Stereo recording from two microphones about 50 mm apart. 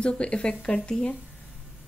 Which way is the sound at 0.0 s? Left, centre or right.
Left.